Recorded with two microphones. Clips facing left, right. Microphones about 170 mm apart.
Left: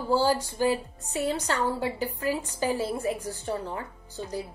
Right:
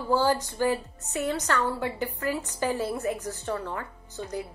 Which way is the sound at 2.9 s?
30° left (ahead or behind).